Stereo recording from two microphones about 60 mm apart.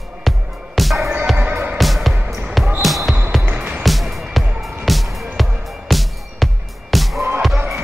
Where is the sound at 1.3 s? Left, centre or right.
Right.